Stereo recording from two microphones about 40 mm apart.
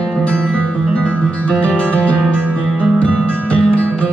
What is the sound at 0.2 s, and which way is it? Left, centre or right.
Music, left.